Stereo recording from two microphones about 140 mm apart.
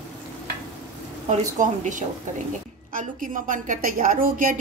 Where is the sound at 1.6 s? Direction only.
65° right (ahead or behind).